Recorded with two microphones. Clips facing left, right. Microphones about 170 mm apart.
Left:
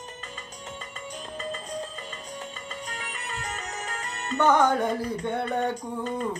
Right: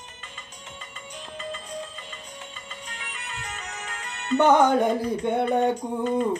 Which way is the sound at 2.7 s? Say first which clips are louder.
Left 4 dB; 40° left (ahead or behind).